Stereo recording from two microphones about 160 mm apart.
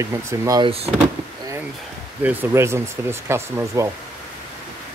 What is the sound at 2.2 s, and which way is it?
Speech, 15° right (ahead or behind).